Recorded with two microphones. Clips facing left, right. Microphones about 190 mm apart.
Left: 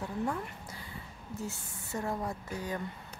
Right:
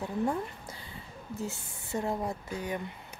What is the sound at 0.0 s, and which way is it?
A woman's voice, 25° right (ahead or behind).